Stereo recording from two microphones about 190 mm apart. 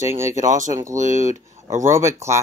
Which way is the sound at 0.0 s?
15° right (ahead or behind).